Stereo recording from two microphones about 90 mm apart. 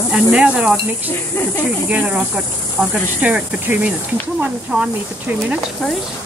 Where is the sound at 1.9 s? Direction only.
10° right (ahead or behind).